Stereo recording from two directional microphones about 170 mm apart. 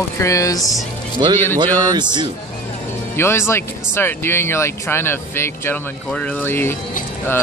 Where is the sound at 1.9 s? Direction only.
25° right (ahead or behind).